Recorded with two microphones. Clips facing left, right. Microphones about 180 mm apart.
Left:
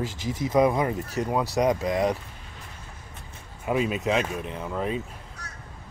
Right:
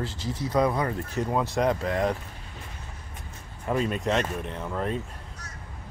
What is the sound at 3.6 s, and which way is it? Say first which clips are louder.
Speech: left 1 dB; 5° left (ahead or behind).